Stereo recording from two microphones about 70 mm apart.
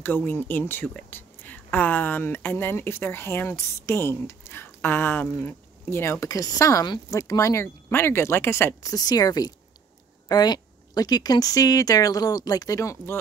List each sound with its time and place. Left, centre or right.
0.0 s speech: left
7.6 s speech: left
8.8 s a woman's voice: left
12.9 s speech: left